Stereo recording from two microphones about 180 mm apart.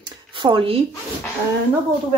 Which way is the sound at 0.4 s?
30° right (ahead or behind).